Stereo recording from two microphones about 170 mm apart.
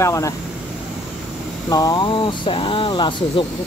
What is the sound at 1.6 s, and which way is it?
Speech, 20° left (ahead or behind).